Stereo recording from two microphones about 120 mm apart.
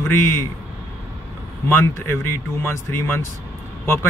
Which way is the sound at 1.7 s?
20° left (ahead or behind).